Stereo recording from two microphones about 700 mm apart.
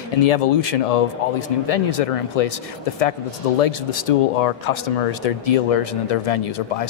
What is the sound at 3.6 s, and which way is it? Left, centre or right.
Speech, left.